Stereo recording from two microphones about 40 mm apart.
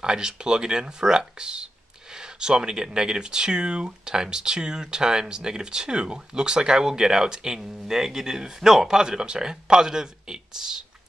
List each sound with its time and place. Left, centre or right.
0.0 s speech: centre